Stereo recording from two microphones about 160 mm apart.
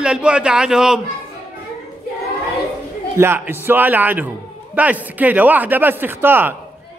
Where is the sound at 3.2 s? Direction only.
15° right (ahead or behind).